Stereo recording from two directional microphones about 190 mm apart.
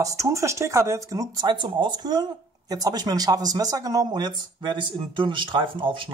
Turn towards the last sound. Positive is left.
turn(degrees=-25)  # may be behind; listen again after turning